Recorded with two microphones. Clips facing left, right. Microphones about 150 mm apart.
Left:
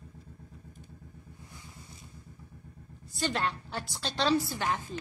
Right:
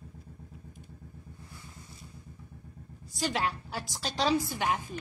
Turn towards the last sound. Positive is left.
turn(degrees=-15)  # may be behind; listen again after turning